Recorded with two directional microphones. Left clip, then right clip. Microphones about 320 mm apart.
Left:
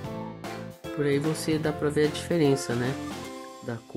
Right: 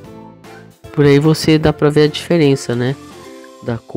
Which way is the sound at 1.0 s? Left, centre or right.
Right.